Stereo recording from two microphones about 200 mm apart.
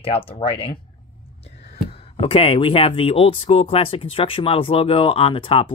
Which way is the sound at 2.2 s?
30° left (ahead or behind).